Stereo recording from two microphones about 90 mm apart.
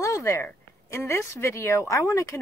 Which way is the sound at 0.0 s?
35° left (ahead or behind).